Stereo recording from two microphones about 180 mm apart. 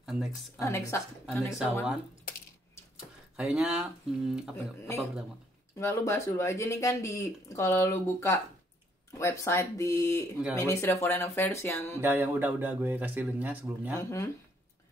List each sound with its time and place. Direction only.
0.0 s a sound: 5° right (ahead or behind)
0.6 s speech: 15° left (ahead or behind)
3.3 s speech: 5° right (ahead or behind)
5.8 s speech: 15° left (ahead or behind)
12.0 s speech: 10° right (ahead or behind)
13.9 s speech: 15° left (ahead or behind)